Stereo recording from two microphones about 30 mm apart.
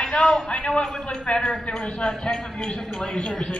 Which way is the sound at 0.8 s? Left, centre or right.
Left.